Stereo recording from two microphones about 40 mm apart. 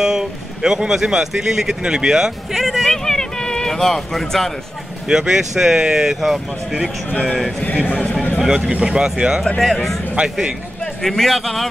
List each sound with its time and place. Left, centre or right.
0.0 s speech: centre
2.5 s speech: centre
5.0 s speech: centre
7.6 s a man's voice: left
8.7 s speech: right
9.6 s a man's voice: centre
11.0 s a man's voice: centre